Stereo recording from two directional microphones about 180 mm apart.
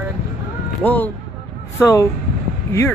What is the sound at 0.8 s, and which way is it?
Speech, 10° left (ahead or behind).